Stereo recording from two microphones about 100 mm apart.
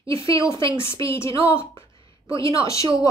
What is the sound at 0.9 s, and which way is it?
A woman's voice, 25° left (ahead or behind).